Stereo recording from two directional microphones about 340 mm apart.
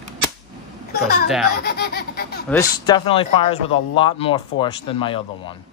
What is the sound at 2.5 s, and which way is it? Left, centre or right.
Speech, centre.